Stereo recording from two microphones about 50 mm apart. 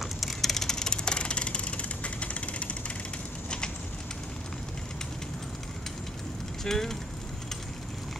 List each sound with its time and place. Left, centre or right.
0.0 s vehicle: centre; by 2.8 s left
6.6 s speech: centre